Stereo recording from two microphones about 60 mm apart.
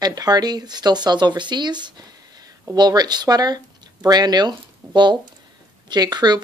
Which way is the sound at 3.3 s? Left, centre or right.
Right.